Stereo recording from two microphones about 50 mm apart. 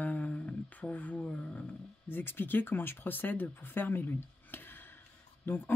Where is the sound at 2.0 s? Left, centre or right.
Left.